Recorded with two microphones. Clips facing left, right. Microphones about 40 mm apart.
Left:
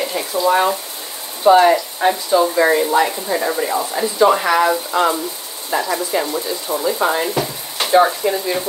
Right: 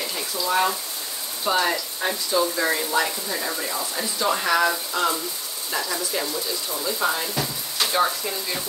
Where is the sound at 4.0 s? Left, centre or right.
Centre.